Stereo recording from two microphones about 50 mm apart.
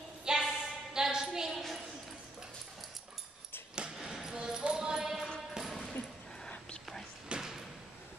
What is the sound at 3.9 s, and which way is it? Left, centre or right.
Basketball bounce, centre.